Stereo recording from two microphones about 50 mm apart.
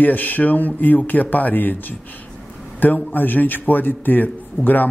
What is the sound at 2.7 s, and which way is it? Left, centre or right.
Speech, left.